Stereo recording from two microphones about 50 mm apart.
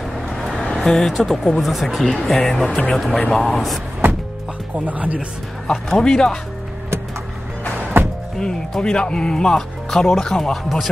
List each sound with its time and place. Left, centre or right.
0.3 s vehicle: centre
0.8 s speech: centre
1.6 s speech: centre
2.5 s speech: left
2.9 s speech: centre
4.0 s music: right
4.7 s speech: right
5.7 s speech: centre
7.7 s music: right
8.4 s speech: centre